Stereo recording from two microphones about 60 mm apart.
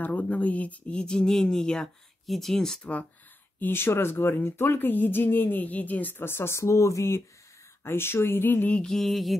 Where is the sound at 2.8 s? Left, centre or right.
Centre.